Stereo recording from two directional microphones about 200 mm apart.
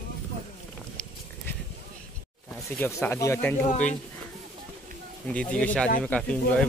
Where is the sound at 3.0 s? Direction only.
15° left (ahead or behind).